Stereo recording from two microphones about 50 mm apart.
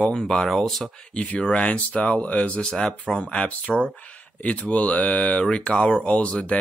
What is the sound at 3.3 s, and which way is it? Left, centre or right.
Speech, left.